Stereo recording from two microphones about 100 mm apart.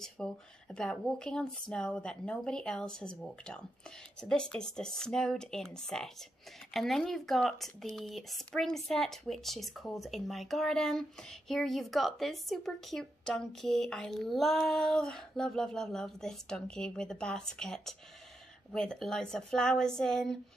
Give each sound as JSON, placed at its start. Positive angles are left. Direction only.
{"t": 0.2, "sound": "a woman's voice", "side_deg": 10}